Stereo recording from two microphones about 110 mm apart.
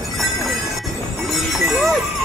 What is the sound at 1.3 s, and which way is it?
Music, centre (ahead or behind).